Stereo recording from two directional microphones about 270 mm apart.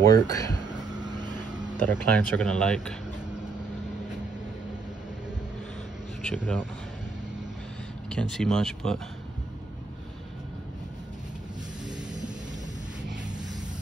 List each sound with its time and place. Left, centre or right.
0.0 s speech: centre
1.2 s vehicle: centre
1.8 s speech: centre
6.2 s speech: centre
8.1 s speech: centre